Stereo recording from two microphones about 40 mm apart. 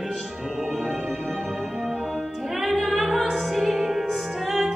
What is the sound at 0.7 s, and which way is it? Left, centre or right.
Music, centre.